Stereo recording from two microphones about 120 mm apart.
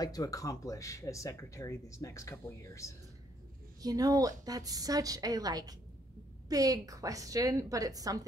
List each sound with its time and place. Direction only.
0.0 s speech: 30° left (ahead or behind)
3.8 s a woman's voice: 30° right (ahead or behind)